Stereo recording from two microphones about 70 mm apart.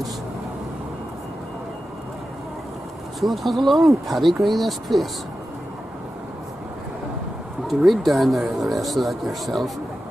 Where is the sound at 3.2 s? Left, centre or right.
Centre.